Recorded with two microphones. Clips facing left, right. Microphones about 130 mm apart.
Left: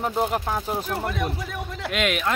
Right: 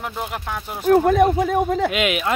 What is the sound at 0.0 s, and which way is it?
Speech, 35° left (ahead or behind).